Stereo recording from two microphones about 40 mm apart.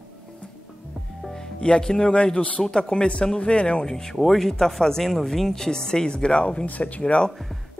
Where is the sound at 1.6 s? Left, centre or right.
Centre.